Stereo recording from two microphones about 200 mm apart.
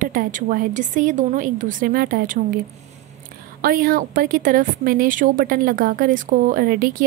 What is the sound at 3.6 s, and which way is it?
Speech, 45° right (ahead or behind).